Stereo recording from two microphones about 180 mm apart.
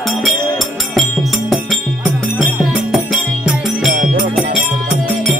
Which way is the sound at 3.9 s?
45° right (ahead or behind).